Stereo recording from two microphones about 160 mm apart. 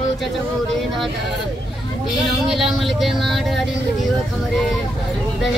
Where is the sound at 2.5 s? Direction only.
Centre (ahead or behind).